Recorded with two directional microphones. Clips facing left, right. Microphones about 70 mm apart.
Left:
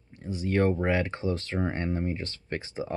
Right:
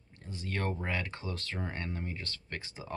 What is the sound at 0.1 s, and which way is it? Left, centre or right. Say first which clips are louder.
Speech: left 11 dB; centre.